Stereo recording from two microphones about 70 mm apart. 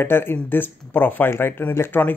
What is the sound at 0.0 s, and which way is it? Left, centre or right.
Speech, left.